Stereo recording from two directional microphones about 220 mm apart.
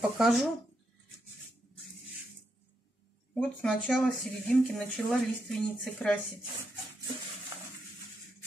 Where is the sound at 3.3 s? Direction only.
5° left (ahead or behind).